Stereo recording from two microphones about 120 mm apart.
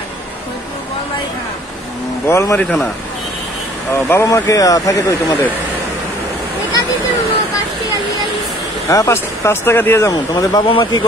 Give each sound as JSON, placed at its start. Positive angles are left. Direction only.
{"t": 2.2, "sound": "speech", "side_deg": 25}
{"t": 2.6, "sound": "speech", "side_deg": 10}
{"t": 4.1, "sound": "speech", "side_deg": 25}
{"t": 8.8, "sound": "speech", "side_deg": 25}
{"t": 10.1, "sound": "speech", "side_deg": 30}